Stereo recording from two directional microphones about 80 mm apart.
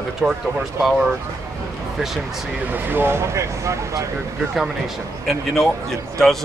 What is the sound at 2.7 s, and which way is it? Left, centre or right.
Speech, right.